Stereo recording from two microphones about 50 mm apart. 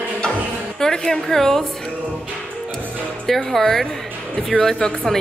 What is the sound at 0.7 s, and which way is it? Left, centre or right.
Speech, centre.